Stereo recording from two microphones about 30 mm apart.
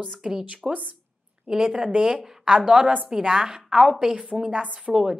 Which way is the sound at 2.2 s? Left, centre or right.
Centre.